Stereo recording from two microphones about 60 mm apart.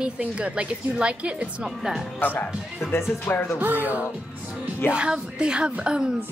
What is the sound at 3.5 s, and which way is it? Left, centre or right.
Music, right.